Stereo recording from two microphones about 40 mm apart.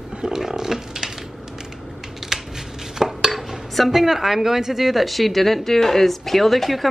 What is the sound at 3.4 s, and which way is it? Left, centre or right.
Speech, centre.